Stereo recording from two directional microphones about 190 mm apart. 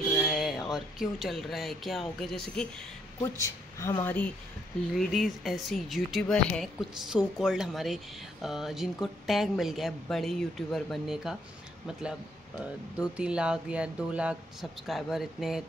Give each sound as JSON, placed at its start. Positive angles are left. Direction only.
{"t": 0.2, "sound": "speech", "side_deg": 0}
{"t": 3.2, "sound": "speech", "side_deg": 15}
{"t": 4.9, "sound": "speech", "side_deg": 0}
{"t": 13.1, "sound": "speech", "side_deg": -5}